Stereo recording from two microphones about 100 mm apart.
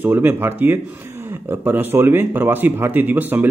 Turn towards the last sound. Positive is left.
turn(degrees=-20)  # may be behind; listen again after turning